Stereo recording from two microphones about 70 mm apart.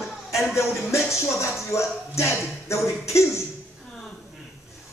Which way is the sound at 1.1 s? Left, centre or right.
Left.